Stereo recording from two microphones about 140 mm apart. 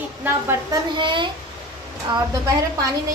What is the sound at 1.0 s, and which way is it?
Speech, 35° right (ahead or behind).